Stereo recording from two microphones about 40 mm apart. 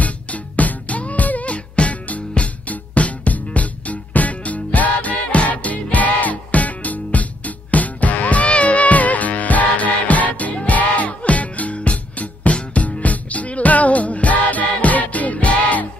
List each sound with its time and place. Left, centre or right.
0.0 s music: left